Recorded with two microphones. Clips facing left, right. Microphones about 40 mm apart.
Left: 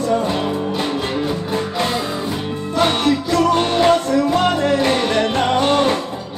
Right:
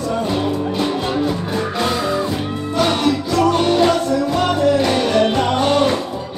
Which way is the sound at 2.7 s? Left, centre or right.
Left.